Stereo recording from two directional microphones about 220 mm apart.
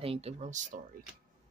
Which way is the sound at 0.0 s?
25° right (ahead or behind).